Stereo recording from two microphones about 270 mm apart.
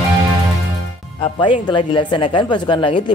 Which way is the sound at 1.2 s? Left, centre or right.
Centre.